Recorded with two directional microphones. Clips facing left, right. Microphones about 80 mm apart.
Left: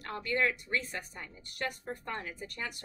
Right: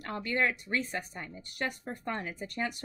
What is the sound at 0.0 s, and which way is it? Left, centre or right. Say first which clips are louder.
Speech: right 1 dB; right.